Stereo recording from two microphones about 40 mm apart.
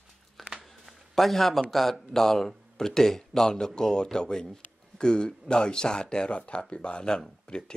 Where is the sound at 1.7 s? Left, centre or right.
Centre.